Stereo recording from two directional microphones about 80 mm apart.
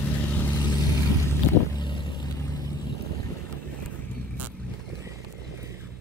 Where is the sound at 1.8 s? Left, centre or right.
Left.